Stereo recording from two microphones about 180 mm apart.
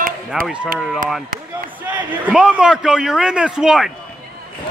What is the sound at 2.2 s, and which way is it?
A man's voice, 5° right (ahead or behind).